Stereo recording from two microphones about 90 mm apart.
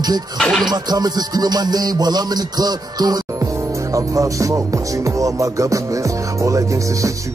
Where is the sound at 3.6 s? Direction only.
35° right (ahead or behind).